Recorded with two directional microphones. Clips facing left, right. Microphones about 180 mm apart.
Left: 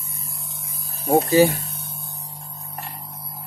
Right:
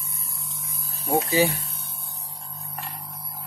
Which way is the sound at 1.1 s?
45° left (ahead or behind).